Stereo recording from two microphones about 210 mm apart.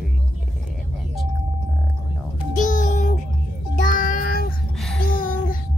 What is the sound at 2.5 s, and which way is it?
Music, 40° left (ahead or behind).